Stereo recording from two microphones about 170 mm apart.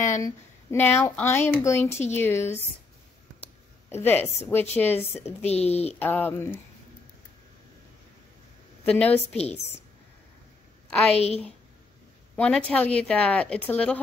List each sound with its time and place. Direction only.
0.0 s speech: 15° left (ahead or behind)
3.9 s a woman's voice: 10° left (ahead or behind)
5.5 s a woman's voice: 40° left (ahead or behind)
5.9 s speech: 10° left (ahead or behind)
8.8 s speech: 10° left (ahead or behind)
11.1 s a woman's voice: 40° left (ahead or behind)
12.4 s speech: 5° left (ahead or behind)